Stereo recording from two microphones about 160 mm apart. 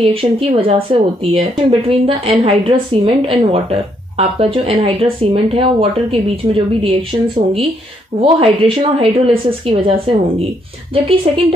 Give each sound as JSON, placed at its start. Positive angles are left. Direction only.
{"t": 0.0, "sound": "a woman's voice", "side_deg": -35}